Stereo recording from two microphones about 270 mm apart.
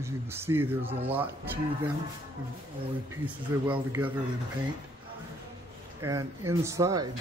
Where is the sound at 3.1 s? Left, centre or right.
Centre.